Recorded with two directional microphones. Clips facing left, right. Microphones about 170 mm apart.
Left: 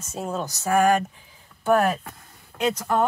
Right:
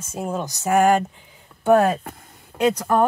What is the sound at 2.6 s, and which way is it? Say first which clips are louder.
Speech: right 4 dB; 50° right (ahead or behind).